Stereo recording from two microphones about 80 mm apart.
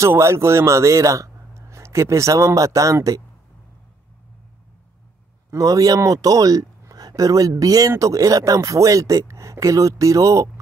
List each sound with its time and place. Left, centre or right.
0.0 s speech: right
5.5 s speech: right